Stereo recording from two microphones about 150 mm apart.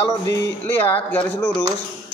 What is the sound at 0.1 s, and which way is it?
A man's voice, 20° left (ahead or behind).